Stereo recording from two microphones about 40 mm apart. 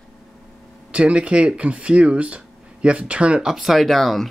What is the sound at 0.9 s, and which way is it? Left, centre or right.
Speech, right.